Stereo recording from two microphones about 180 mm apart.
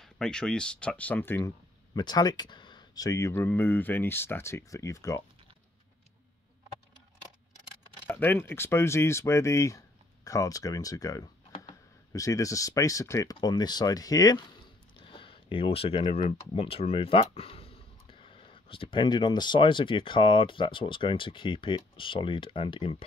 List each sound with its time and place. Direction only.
0.0 s speech: 5° left (ahead or behind)
2.0 s speech: 20° left (ahead or behind)
8.1 s speech: 10° left (ahead or behind); by 23.0 s 30° left (ahead or behind)